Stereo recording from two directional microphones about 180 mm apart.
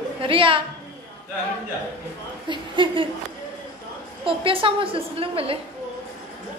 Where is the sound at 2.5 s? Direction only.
25° right (ahead or behind).